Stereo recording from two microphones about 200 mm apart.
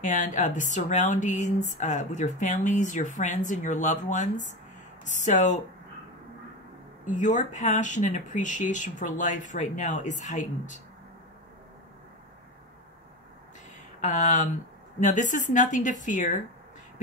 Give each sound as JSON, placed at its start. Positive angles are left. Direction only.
{"t": 0.0, "sound": "speech", "side_deg": 40}
{"t": 7.1, "sound": "speech", "side_deg": 40}
{"t": 14.0, "sound": "speech", "side_deg": 35}